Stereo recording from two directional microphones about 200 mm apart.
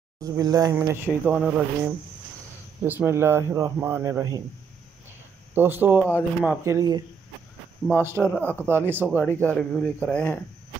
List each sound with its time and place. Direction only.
0.2 s speech: 15° right (ahead or behind)
5.5 s speech: 10° right (ahead or behind)
8.0 s speech: 10° right (ahead or behind)
9.2 s speech: 10° left (ahead or behind)